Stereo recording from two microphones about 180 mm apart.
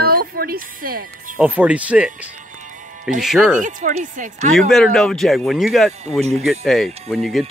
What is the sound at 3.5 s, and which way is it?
A woman's voice, 45° right (ahead or behind).